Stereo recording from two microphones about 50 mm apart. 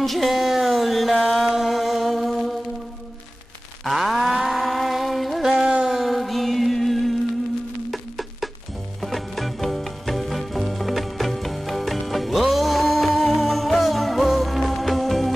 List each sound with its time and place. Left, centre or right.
0.0 s speech: centre
1.1 s music: centre
3.8 s a sound: centre
5.6 s music: centre
5.9 s music: centre